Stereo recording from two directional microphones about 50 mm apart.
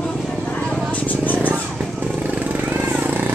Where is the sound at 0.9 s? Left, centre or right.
Left.